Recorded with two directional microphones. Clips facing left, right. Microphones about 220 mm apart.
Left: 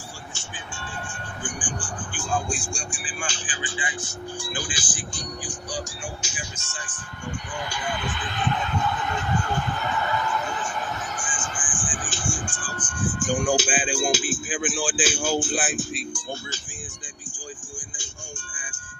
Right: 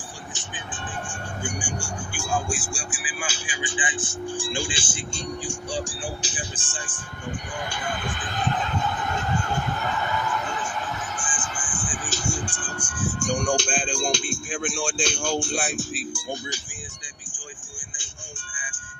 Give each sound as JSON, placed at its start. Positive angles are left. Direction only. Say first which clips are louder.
{"t": 1.0, "sound": "speech", "louder": "right 3 dB", "side_deg": -10}
{"t": 4.4, "sound": "speech", "louder": "right 4 dB", "side_deg": -25}
{"t": 7.9, "sound": "speech", "louder": "left 1 dB", "side_deg": -50}
{"t": 11.6, "sound": "music", "louder": "even", "side_deg": -40}
{"t": 12.6, "sound": "music", "louder": "left 4 dB", "side_deg": -10}